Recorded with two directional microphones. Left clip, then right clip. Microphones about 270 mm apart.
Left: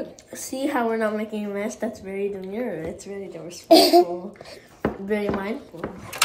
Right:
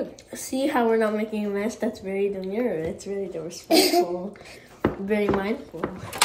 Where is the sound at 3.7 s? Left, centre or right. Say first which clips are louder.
Left 6 dB; left.